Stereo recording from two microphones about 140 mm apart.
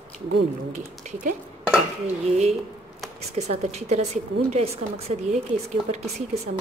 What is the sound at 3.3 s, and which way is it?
A woman's voice, 50° right (ahead or behind).